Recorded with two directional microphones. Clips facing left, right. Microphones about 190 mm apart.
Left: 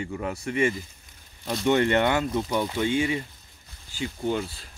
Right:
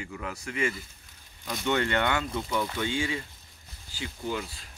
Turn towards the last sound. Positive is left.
turn(degrees=25)  # may be behind; listen again after turning